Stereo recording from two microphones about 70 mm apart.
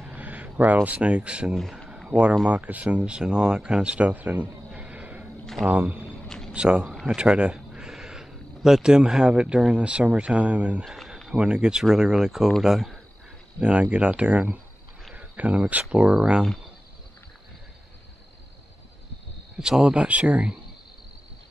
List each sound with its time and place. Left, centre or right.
0.0 s speech: right
1.5 s speech: centre
2.0 s speech: centre
4.6 s a sound: centre
5.7 s speech: right
6.2 s a sound: centre
6.5 s speech: centre
7.2 s a sound: centre
9.8 s speech: centre
10.9 s a sound: centre
11.3 s speech: centre
13.6 s speech: centre
19.5 s speech: centre